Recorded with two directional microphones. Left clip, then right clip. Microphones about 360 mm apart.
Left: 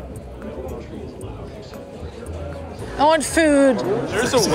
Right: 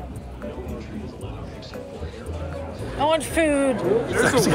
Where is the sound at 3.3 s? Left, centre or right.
Centre.